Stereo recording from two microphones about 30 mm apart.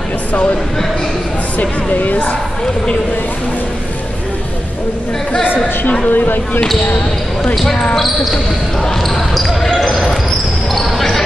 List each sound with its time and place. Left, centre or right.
1.6 s speech: left
6.0 s speech: left
9.0 s speech: centre